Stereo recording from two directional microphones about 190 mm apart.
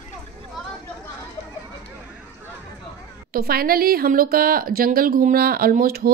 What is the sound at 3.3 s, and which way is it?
Speech, 50° right (ahead or behind).